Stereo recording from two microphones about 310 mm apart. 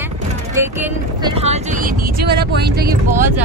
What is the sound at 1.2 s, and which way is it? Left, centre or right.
Speech, centre.